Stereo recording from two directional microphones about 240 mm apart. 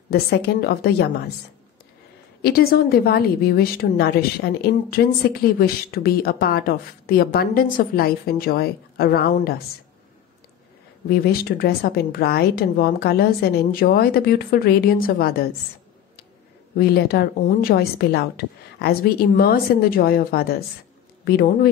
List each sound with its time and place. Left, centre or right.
0.1 s a woman's voice: left
2.4 s a woman's voice: left
11.1 s a woman's voice: left
16.7 s a woman's voice: left